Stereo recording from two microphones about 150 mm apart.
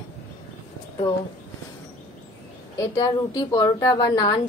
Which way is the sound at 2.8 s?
25° left (ahead or behind).